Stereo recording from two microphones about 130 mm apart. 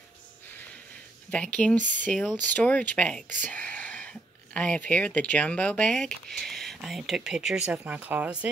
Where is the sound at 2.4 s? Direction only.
10° left (ahead or behind).